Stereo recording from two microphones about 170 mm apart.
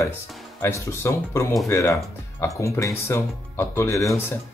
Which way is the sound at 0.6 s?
15° left (ahead or behind).